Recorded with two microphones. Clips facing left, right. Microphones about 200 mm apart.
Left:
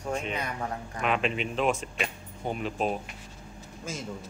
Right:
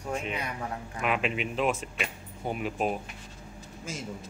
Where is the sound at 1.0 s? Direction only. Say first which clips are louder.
Left 1 dB; 5° right (ahead or behind).